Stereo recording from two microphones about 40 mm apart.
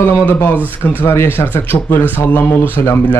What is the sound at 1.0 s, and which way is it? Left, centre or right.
Speech, left.